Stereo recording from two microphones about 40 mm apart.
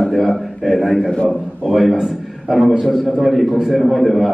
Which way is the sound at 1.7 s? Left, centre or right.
Centre.